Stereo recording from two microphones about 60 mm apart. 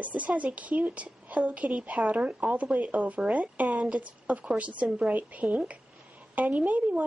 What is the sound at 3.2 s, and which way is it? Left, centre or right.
A woman's voice, centre.